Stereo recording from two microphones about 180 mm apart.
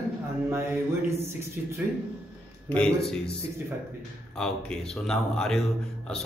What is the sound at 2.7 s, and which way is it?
Speech, 5° left (ahead or behind).